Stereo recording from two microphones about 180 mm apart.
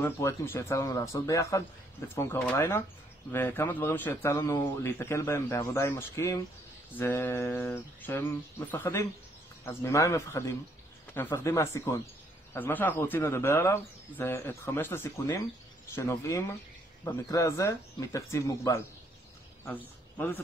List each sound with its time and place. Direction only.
0.0 s speech: 15° left (ahead or behind)